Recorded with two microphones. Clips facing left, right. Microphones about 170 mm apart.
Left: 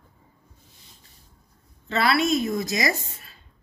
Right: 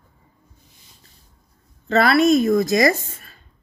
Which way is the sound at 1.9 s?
50° right (ahead or behind).